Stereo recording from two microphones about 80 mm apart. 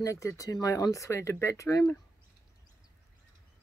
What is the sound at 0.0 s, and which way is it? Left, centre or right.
Speech, left.